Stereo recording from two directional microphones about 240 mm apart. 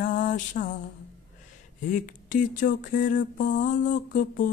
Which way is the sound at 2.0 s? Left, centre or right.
Left.